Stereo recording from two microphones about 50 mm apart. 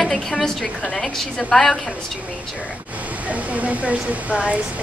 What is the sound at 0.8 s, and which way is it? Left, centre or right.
Speech, left.